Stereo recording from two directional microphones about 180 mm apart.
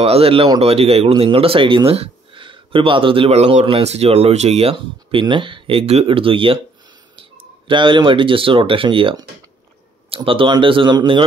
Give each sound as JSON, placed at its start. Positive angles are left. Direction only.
{"t": 0.0, "sound": "speech", "side_deg": -35}